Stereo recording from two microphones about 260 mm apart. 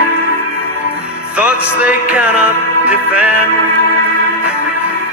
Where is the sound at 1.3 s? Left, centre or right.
Centre.